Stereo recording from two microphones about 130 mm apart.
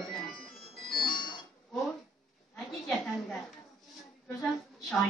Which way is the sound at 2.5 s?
Centre (ahead or behind).